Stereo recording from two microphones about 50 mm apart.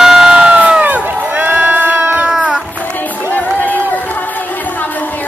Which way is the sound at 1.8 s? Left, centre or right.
Right.